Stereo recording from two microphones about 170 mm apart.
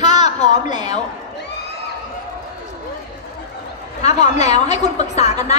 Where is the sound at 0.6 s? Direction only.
25° right (ahead or behind).